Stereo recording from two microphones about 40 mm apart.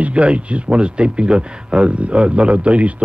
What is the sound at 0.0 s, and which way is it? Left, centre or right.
Speech, right.